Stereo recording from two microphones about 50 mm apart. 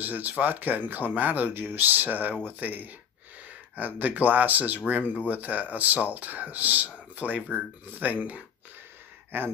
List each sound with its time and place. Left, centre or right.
0.0 s speech: right